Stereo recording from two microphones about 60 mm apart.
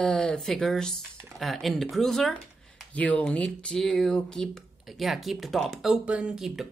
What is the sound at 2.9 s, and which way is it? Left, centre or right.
Speech, left.